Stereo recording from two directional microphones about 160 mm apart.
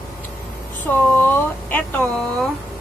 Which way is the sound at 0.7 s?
10° left (ahead or behind).